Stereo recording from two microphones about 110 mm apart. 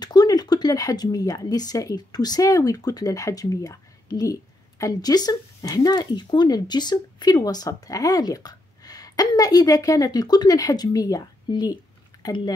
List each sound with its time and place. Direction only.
0.0 s a woman's voice: 40° left (ahead or behind)